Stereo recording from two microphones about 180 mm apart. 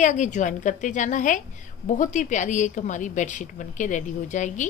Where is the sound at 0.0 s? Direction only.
40° left (ahead or behind).